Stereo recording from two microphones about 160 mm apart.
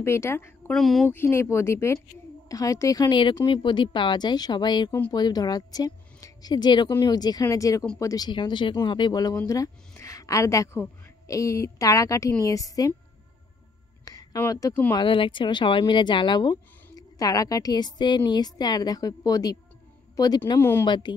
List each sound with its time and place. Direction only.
0.0 s speech: 15° left (ahead or behind)
0.7 s speech: centre (ahead or behind)
1.1 s a woman's voice: 15° left (ahead or behind)
14.0 s a sound: 20° left (ahead or behind)
14.9 s a woman's voice: 30° left (ahead or behind)
20.5 s speech: 15° left (ahead or behind)
20.8 s a woman's voice: 30° left (ahead or behind)